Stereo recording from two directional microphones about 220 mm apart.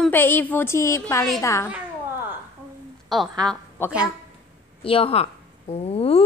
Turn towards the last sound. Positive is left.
turn(degrees=25)  # may be behind; listen again after turning